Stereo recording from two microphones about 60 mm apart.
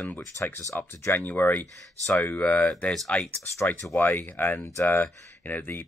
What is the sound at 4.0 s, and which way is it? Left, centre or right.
Speech, left.